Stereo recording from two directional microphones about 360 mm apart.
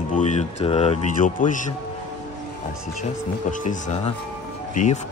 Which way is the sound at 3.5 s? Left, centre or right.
Left.